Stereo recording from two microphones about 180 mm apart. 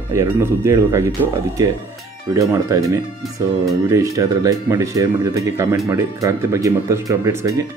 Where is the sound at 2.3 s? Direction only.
20° right (ahead or behind).